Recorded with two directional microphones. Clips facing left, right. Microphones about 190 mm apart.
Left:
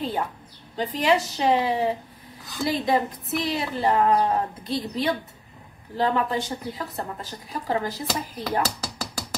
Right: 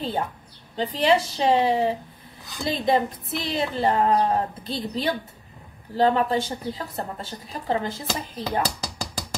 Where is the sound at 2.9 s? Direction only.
30° right (ahead or behind).